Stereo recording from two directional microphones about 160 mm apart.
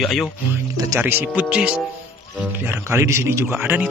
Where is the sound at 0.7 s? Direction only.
20° right (ahead or behind).